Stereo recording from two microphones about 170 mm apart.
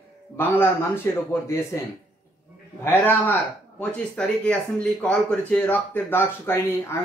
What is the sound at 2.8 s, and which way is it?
Speech, 10° left (ahead or behind).